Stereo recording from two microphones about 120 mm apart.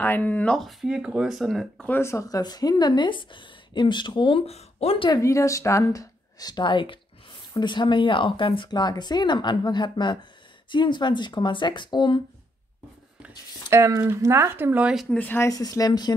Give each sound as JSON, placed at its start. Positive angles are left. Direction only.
{"t": 0.0, "sound": "speech", "side_deg": 15}
{"t": 0.6, "sound": "speech", "side_deg": 0}
{"t": 1.9, "sound": "speech", "side_deg": 20}
{"t": 4.5, "sound": "speech", "side_deg": 60}
{"t": 5.2, "sound": "speech", "side_deg": 25}
{"t": 13.7, "sound": "speech", "side_deg": -25}
{"t": 15.1, "sound": "speech", "side_deg": 15}
{"t": 15.4, "sound": "speech", "side_deg": 30}